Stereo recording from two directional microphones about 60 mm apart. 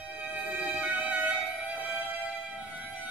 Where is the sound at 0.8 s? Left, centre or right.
Right.